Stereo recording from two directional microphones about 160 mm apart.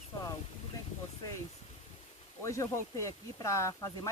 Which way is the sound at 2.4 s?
20° left (ahead or behind).